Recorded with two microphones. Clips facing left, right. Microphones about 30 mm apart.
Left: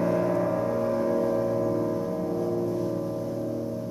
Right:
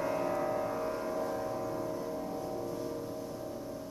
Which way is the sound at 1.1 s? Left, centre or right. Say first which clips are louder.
Left 10 dB; centre.